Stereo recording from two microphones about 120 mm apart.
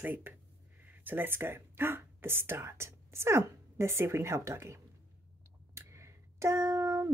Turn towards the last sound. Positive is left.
turn(degrees=-30)  # may be behind; listen again after turning